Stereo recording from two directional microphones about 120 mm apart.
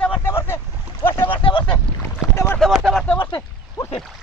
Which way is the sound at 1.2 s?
45° left (ahead or behind).